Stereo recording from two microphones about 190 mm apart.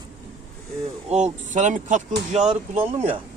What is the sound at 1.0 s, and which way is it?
Speech, 35° right (ahead or behind).